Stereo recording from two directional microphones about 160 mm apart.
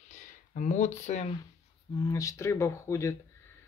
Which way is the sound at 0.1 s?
50° left (ahead or behind).